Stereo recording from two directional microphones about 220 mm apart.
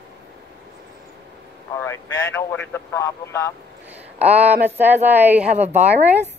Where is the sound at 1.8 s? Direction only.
10° left (ahead or behind).